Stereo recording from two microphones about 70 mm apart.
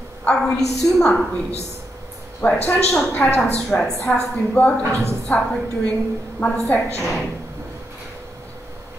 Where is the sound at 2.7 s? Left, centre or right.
Centre.